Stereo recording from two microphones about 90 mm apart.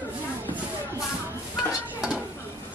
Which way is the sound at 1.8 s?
10° right (ahead or behind).